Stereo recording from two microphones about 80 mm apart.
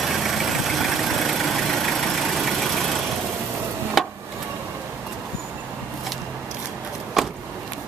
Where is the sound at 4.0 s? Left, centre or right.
Centre.